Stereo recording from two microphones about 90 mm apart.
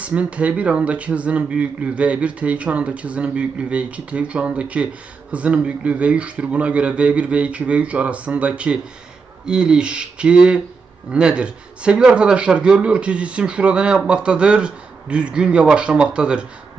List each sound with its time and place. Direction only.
0.0 s a man's voice: 15° right (ahead or behind)